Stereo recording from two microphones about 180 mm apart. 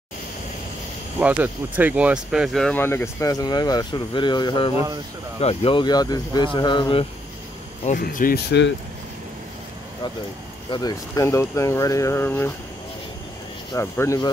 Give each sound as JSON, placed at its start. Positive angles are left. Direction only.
{"t": 1.2, "sound": "speech", "side_deg": -10}
{"t": 7.8, "sound": "speech", "side_deg": 45}
{"t": 10.7, "sound": "speech", "side_deg": 20}
{"t": 13.7, "sound": "speech", "side_deg": 15}